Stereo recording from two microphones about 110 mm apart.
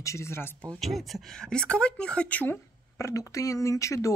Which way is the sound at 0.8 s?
Centre (ahead or behind).